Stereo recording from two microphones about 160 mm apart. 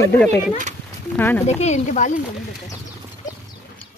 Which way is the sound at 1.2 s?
10° left (ahead or behind).